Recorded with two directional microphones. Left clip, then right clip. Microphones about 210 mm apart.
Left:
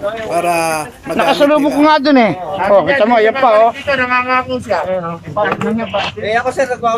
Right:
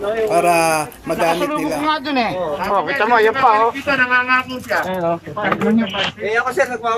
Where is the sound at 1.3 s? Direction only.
50° left (ahead or behind).